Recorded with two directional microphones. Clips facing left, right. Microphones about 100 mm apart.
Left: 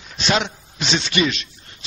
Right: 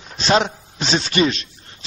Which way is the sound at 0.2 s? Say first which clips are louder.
Right 4 dB; 35° right (ahead or behind).